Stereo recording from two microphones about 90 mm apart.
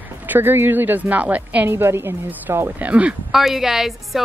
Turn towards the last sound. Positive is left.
turn(degrees=-5)  # may be behind; listen again after turning